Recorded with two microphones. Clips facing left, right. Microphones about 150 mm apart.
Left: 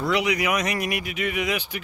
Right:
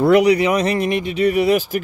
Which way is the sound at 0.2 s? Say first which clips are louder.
Right 9 dB; 30° right (ahead or behind).